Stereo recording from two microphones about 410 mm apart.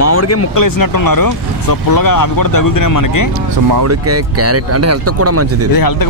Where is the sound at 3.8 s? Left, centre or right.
Right.